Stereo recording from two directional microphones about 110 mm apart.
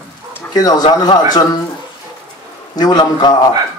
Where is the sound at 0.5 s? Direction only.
40° left (ahead or behind).